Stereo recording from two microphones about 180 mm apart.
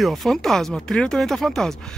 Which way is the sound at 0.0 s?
Centre (ahead or behind).